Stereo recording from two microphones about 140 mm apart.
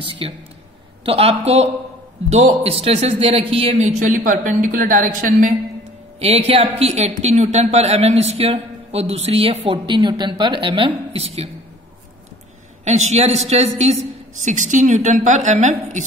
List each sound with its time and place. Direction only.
0.0 s speech: 40° right (ahead or behind)
3.7 s a woman's voice: 60° right (ahead or behind)
6.1 s speech: 45° right (ahead or behind)
12.8 s speech: 55° right (ahead or behind)
14.4 s a woman's voice: 60° right (ahead or behind)